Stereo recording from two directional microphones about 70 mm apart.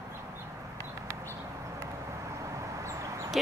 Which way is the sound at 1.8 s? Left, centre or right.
Right.